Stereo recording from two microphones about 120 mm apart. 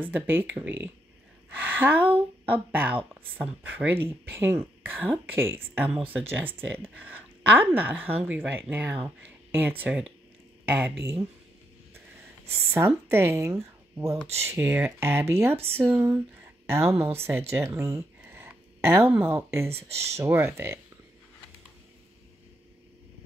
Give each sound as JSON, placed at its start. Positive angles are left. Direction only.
{"t": 0.0, "sound": "a woman's voice", "side_deg": -15}
{"t": 12.7, "sound": "a woman's voice", "side_deg": -20}